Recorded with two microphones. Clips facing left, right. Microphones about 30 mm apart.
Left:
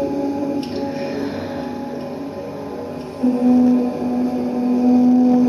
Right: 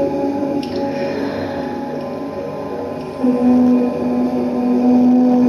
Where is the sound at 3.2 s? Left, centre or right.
Centre.